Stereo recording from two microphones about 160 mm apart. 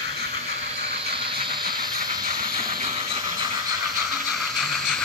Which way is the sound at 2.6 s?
35° right (ahead or behind).